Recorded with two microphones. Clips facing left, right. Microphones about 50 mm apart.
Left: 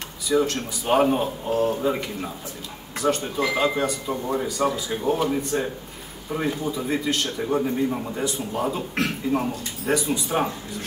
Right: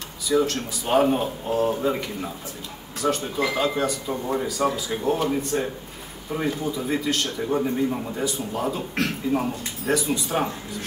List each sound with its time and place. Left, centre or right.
0.3 s speech: centre
1.6 s a man's voice: centre
1.9 s a man's voice: centre